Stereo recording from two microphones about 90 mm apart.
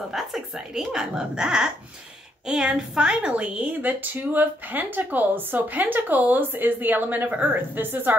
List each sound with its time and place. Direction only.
0.1 s a woman's voice: 5° right (ahead or behind); by 8.2 s 20° right (ahead or behind)